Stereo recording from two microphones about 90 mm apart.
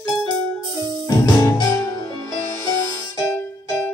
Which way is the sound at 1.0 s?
40° left (ahead or behind).